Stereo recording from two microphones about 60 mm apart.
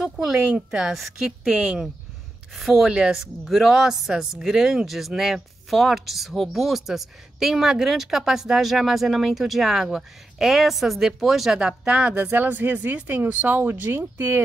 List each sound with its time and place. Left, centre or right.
0.0 s a woman's voice: centre
2.5 s speech: centre
2.9 s a woman's voice: centre
3.4 s speech: centre; by 12.4 s right
12.4 s speech: right